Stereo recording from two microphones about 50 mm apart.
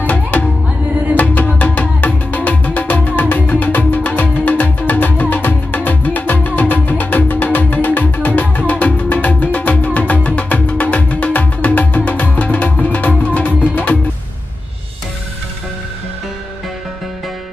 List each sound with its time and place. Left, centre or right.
0.0 s music: left